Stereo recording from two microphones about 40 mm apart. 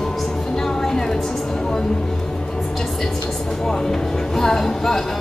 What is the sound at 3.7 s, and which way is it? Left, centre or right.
Speech, centre.